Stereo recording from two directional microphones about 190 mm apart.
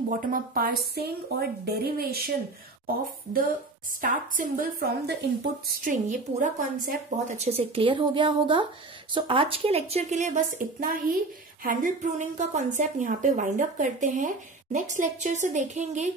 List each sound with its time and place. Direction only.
0.1 s a woman's voice: 45° right (ahead or behind)
4.0 s a woman's voice: 45° right (ahead or behind)
5.9 s a woman's voice: 40° right (ahead or behind)